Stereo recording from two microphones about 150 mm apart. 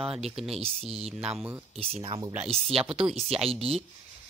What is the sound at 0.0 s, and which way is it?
Speech, 5° right (ahead or behind).